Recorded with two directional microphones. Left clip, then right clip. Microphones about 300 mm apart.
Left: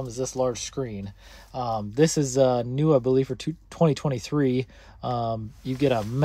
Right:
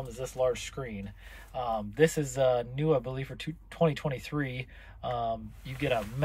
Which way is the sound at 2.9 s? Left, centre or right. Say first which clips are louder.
Left 9 dB; left.